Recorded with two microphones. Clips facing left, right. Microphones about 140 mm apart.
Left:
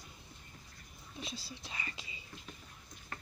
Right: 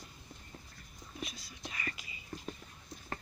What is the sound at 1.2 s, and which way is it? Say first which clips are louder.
Speech: even; 30° left (ahead or behind).